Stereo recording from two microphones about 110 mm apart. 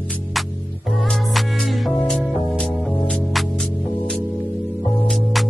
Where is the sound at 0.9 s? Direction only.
Centre (ahead or behind).